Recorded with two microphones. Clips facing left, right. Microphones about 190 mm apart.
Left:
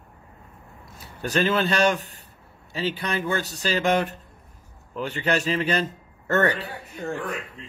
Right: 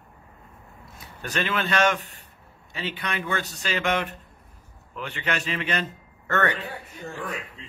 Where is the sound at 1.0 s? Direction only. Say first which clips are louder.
Left 6 dB; 35° left (ahead or behind).